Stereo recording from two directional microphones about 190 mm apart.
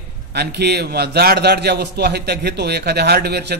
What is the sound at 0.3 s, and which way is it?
A man's voice, 60° right (ahead or behind).